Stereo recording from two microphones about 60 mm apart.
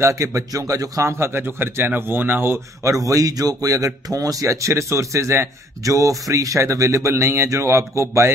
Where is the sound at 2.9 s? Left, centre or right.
Right.